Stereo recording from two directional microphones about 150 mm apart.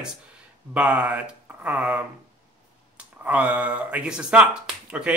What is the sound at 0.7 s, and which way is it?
Speech, 10° right (ahead or behind).